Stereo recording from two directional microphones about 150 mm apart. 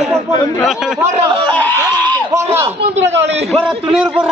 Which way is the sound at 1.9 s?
20° right (ahead or behind).